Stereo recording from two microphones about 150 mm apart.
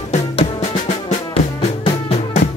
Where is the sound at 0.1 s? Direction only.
50° left (ahead or behind).